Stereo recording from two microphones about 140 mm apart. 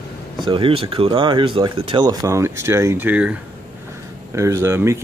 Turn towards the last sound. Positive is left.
turn(degrees=-20)  # may be behind; listen again after turning